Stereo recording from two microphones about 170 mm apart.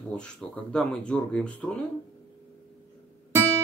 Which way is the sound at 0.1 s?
5° left (ahead or behind).